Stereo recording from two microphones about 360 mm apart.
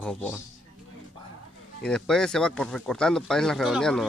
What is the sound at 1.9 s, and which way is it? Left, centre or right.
Speech, centre.